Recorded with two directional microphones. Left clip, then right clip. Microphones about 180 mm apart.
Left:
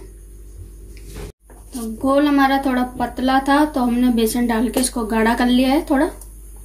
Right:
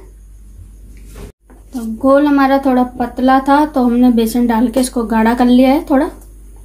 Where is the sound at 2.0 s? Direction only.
45° right (ahead or behind).